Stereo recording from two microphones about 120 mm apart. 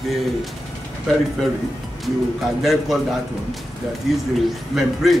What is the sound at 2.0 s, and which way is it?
Speech, centre (ahead or behind).